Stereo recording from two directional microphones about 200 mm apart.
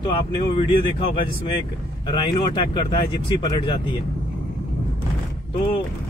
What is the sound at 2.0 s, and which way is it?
Speech, 20° left (ahead or behind).